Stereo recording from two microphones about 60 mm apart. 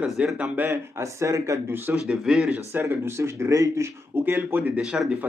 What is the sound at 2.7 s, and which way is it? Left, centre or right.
Speech, right.